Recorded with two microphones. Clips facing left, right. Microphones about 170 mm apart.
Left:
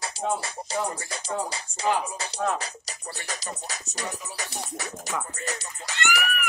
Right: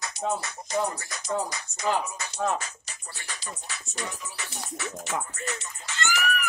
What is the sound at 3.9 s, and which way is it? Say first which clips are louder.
Speech: left 1 dB; 40° left (ahead or behind).